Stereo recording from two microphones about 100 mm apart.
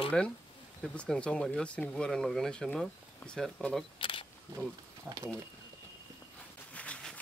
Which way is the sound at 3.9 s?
60° left (ahead or behind).